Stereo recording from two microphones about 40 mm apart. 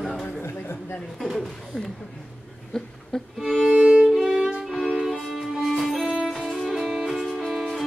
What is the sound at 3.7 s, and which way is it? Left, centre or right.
Violin, right.